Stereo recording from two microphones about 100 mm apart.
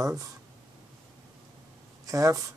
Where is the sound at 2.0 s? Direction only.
35° right (ahead or behind).